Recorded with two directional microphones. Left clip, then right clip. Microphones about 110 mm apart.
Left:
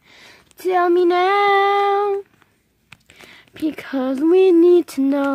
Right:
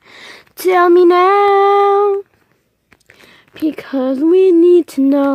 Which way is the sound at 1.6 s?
45° right (ahead or behind).